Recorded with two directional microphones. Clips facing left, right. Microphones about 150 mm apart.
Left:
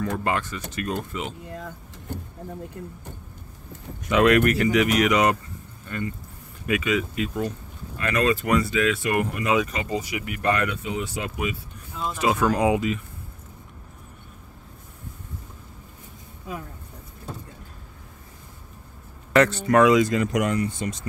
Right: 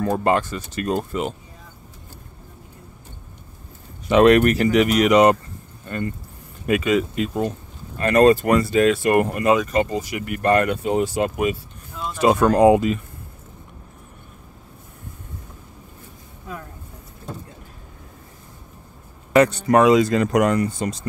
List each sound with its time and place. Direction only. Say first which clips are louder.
0.0 s speech: right 6 dB; 35° right (ahead or behind)
1.5 s vehicle: left 9 dB; 80° left
4.1 s speech: right 5 dB; 30° right (ahead or behind)
11.9 s a sound: even; centre (ahead or behind)
12.2 s speech: right 7 dB; 40° right (ahead or behind)
19.3 s speech: right 3 dB; 20° right (ahead or behind); by 21.1 s 35° right (ahead or behind)